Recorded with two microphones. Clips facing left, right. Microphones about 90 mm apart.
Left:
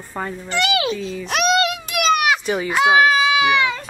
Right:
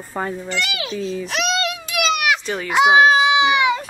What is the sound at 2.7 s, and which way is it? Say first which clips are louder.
Speech: right 2 dB; 20° right (ahead or behind).